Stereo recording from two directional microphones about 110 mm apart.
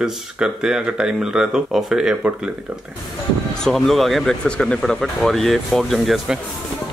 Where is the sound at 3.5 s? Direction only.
5° left (ahead or behind).